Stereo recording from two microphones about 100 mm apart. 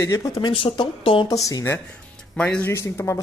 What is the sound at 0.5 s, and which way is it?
Speech, 65° left (ahead or behind).